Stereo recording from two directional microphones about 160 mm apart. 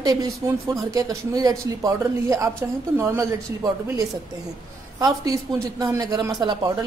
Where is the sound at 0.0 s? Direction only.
25° right (ahead or behind).